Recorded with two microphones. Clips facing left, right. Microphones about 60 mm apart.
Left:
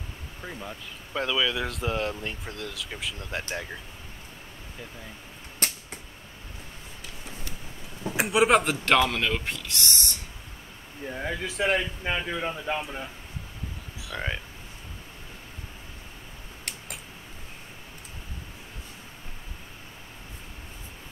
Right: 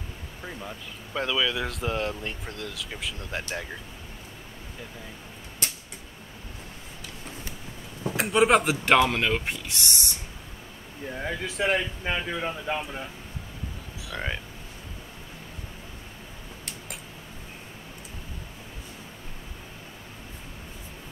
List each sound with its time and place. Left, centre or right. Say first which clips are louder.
0.4 s speech: even; centre
5.6 s a sound: left 3 dB; left
8.2 s speech: even; centre
8.8 s speech: right 2 dB; centre
11.1 s speech: even; centre